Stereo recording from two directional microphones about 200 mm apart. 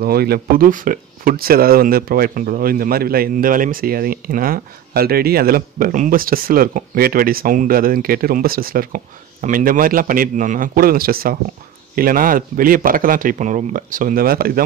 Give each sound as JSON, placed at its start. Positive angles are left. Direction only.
{"t": 0.0, "sound": "speech", "side_deg": -50}